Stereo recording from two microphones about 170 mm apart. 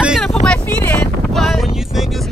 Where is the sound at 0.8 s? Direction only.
10° left (ahead or behind).